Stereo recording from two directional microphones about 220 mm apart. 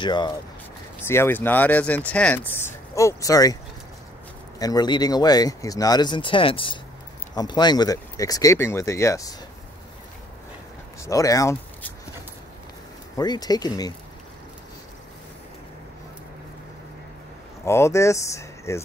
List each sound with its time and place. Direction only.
0.0 s speech: 20° left (ahead or behind)
4.6 s speech: 15° left (ahead or behind)
11.0 s speech: 15° left (ahead or behind)
13.2 s speech: 20° left (ahead or behind)
17.6 s speech: 10° left (ahead or behind)